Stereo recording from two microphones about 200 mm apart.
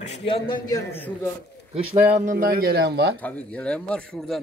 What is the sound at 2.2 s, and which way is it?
Speech, 45° right (ahead or behind).